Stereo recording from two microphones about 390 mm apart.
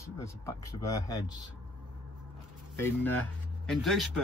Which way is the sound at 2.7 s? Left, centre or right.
Centre.